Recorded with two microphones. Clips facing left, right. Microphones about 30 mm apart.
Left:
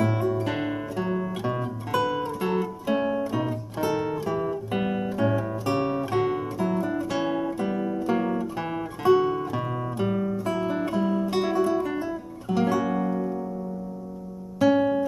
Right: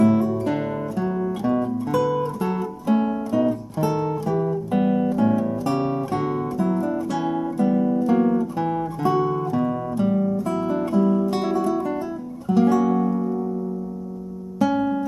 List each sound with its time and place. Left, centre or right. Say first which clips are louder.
0.0 s music: right 6 dB; centre
3.8 s guitar: right 3 dB; centre
6.6 s music: right 3 dB; left
11.2 s music: right 1 dB; centre
14.6 s music: left 1 dB; centre